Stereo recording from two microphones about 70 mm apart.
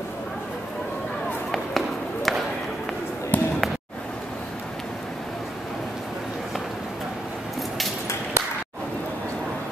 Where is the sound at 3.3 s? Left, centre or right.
Left.